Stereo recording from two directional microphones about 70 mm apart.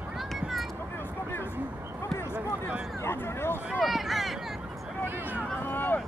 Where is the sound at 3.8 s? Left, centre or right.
Centre.